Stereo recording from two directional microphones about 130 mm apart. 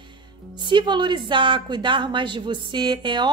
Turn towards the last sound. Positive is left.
turn(degrees=-35)  # may be behind; listen again after turning